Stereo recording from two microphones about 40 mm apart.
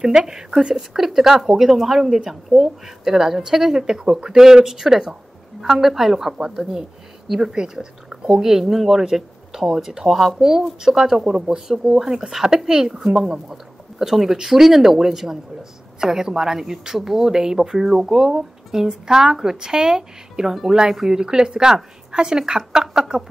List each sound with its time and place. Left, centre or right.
0.0 s speech: centre